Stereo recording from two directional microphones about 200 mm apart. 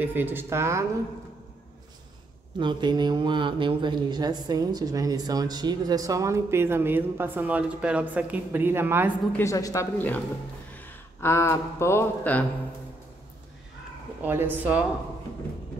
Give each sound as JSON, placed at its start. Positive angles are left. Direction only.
{"t": 0.0, "sound": "speech", "side_deg": -10}
{"t": 2.6, "sound": "speech", "side_deg": -25}
{"t": 9.4, "sound": "speech", "side_deg": 15}
{"t": 14.2, "sound": "speech", "side_deg": -10}